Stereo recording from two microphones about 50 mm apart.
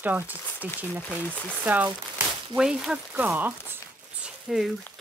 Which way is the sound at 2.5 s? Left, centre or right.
Centre.